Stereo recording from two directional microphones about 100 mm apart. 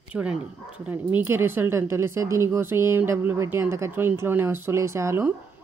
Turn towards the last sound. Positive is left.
turn(degrees=-25)  # may be behind; listen again after turning